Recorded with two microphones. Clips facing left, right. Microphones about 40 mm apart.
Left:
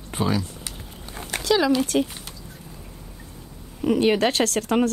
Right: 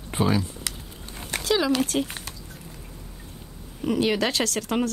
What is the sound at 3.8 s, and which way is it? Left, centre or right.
Speech, left.